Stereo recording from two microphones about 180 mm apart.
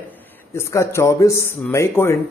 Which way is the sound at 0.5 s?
15° left (ahead or behind).